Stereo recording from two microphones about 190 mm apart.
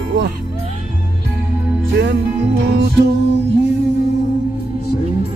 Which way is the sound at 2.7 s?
65° right (ahead or behind).